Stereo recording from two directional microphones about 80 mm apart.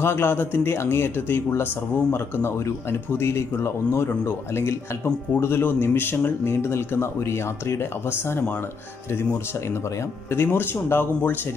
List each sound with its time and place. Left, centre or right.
0.0 s speech: left
10.3 s speech: left